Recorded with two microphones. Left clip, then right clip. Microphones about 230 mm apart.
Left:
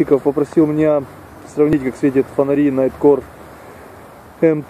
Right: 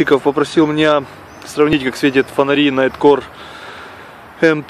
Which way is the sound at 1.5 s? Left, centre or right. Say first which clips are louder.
Right 2 dB; centre.